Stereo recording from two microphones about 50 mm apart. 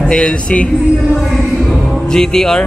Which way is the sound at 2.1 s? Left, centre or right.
Centre.